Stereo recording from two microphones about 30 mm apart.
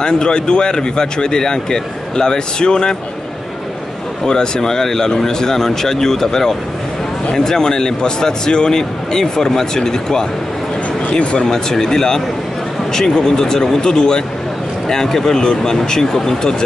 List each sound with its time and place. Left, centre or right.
0.0 s speech: left
4.3 s speech: left
11.4 s speech: centre